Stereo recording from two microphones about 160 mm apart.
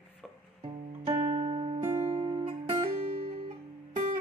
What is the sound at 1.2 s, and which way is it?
Music, 45° right (ahead or behind).